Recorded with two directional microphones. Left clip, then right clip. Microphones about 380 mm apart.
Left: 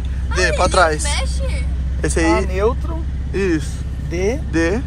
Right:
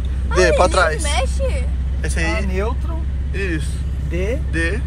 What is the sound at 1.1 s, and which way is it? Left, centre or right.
Speech, centre.